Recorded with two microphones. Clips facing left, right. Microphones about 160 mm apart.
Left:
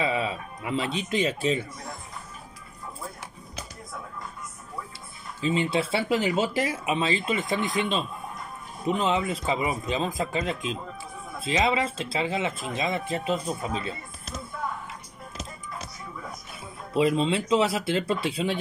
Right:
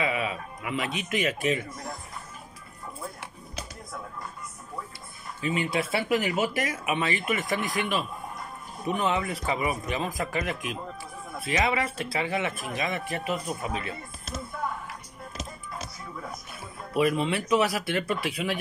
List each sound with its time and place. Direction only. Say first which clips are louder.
0.0 s speech: left 2 dB; 30° left (ahead or behind)
5.4 s speech: left 3 dB; 25° left (ahead or behind)
16.9 s speech: left 2 dB; 25° left (ahead or behind)